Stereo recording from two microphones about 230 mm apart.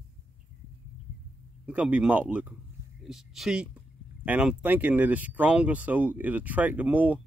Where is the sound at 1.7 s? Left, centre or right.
Centre.